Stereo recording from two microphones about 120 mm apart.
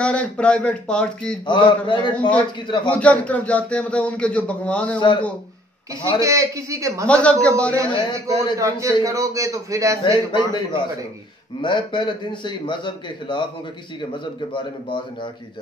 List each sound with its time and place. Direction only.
0.0 s a man's voice: 10° left (ahead or behind)
1.4 s a man's voice: 40° left (ahead or behind)
2.1 s a man's voice: 10° left (ahead or behind)
2.6 s a man's voice: 40° left (ahead or behind)
2.9 s a man's voice: 10° left (ahead or behind)
4.9 s a man's voice: 40° left (ahead or behind)
6.1 s a man's voice: 25° right (ahead or behind)
7.1 s a man's voice: 10° left (ahead or behind)
8.5 s a man's voice: 25° right (ahead or behind)
10.1 s a man's voice: 40° left (ahead or behind)